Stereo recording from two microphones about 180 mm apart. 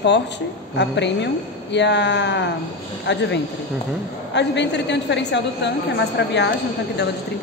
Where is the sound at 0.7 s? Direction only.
75° left (ahead or behind).